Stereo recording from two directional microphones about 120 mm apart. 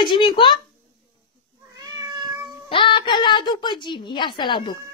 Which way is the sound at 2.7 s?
45° left (ahead or behind).